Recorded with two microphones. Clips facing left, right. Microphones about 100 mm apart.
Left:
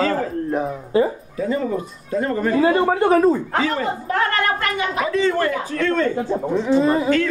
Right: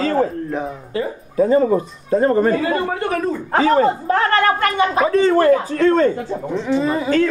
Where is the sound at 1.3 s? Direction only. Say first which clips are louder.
Right 7 dB; 40° right (ahead or behind).